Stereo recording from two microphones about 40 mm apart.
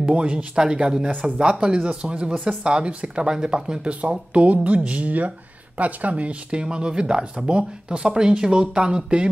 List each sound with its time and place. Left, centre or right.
0.0 s speech: right
0.8 s speech: centre
4.1 s speech: right
5.8 s speech: right
6.6 s speech: right